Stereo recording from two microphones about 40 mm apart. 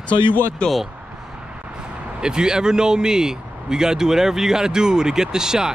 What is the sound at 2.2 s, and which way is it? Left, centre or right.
A man's voice, centre.